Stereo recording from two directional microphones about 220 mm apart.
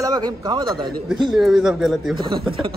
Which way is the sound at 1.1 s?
Centre (ahead or behind).